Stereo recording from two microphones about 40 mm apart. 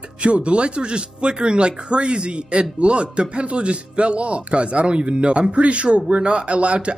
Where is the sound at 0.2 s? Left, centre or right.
Right.